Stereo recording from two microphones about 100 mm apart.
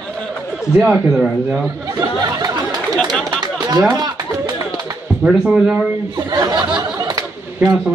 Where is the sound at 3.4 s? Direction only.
40° right (ahead or behind).